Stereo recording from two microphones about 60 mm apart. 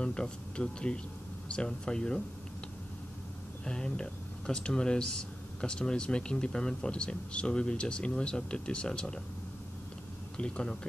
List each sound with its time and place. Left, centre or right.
0.0 s speech: centre
3.6 s speech: centre
10.3 s speech: centre